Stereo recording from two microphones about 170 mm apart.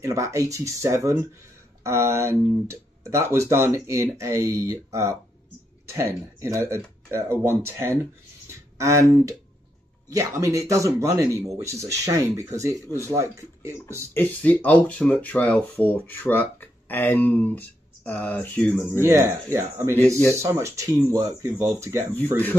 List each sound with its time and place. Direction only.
0.0 s speech: 20° right (ahead or behind)
14.1 s speech: 10° left (ahead or behind)
18.9 s speech: 15° right (ahead or behind)